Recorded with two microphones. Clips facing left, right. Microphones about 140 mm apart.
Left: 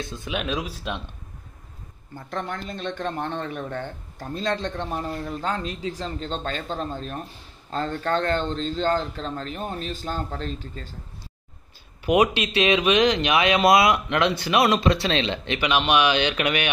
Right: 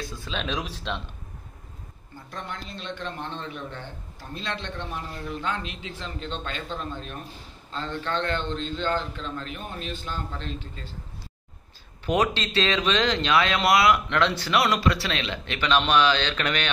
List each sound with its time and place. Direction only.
0.0 s speech: 20° left (ahead or behind)
0.4 s speech: 10° left (ahead or behind)
2.1 s a man's voice: 55° left (ahead or behind)
12.1 s speech: 15° left (ahead or behind)